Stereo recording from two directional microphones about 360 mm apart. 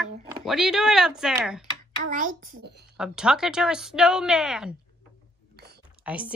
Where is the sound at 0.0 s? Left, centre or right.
Centre.